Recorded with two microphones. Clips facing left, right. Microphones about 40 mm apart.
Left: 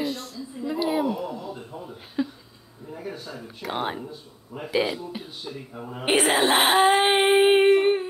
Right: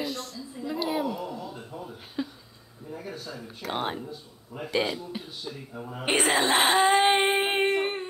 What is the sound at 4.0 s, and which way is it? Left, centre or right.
A woman's voice, centre.